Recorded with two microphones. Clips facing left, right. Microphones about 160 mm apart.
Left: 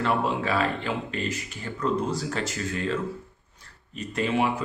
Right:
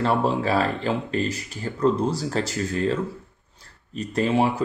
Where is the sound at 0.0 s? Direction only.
35° right (ahead or behind).